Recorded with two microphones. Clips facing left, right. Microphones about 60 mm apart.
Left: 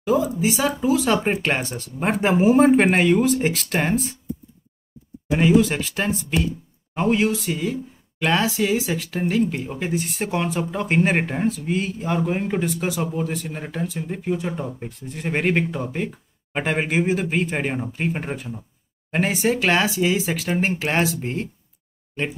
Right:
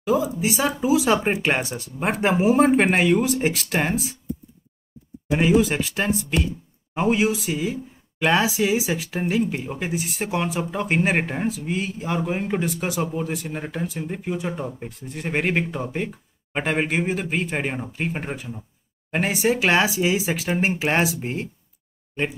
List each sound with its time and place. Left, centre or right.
0.0 s speech: centre
5.4 s speech: centre